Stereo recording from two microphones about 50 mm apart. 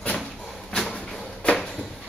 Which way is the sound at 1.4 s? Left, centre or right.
Left.